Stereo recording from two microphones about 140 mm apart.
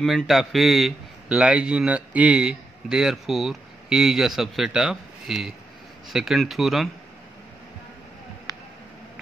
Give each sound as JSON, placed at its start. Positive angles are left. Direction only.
{"t": 0.0, "sound": "a man's voice", "side_deg": 0}